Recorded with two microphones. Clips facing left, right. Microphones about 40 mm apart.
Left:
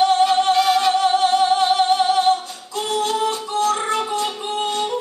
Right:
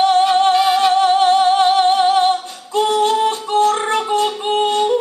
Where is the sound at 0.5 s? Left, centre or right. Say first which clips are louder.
Right 3 dB; right.